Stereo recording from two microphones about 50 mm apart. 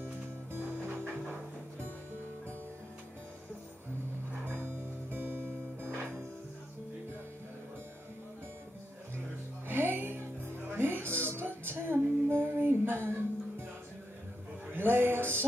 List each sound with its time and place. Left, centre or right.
0.0 s music: right
4.5 s music: right
9.7 s music: right
14.7 s a sound: right